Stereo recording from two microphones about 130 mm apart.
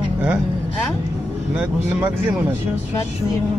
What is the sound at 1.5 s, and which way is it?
Speech, 10° right (ahead or behind).